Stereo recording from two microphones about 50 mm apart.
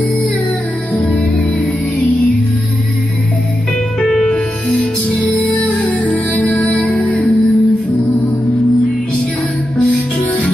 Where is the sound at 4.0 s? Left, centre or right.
Left.